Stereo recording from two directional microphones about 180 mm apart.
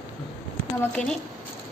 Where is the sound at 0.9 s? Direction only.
5° left (ahead or behind).